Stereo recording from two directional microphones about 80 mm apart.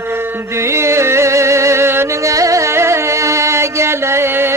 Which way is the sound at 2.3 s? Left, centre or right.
Right.